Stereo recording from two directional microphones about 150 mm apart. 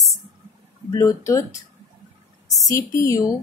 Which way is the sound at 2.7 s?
20° left (ahead or behind).